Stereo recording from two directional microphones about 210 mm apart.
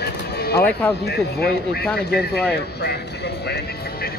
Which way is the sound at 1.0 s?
50° left (ahead or behind).